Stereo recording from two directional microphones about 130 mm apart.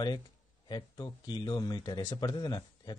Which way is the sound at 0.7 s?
35° left (ahead or behind).